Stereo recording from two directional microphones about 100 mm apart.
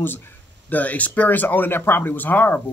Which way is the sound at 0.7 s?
15° left (ahead or behind).